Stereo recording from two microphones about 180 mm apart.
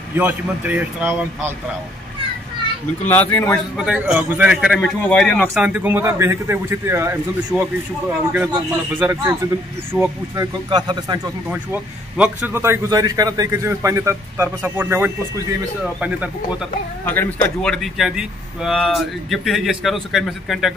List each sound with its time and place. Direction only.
0.1 s a man's voice: 10° right (ahead or behind)
3.1 s a man's voice: 10° left (ahead or behind)
3.7 s a man's voice: 5° right (ahead or behind)
5.6 s a man's voice: 10° right (ahead or behind)
8.9 s a man's voice: 10° right (ahead or behind)
11.5 s a man's voice: 10° right (ahead or behind)
17.0 s a man's voice: 10° left (ahead or behind)